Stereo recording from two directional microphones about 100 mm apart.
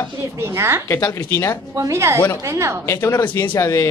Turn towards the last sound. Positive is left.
turn(degrees=30)  # may be behind; listen again after turning